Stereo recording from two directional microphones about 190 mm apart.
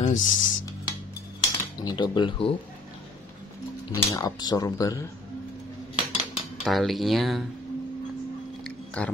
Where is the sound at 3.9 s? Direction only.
20° left (ahead or behind).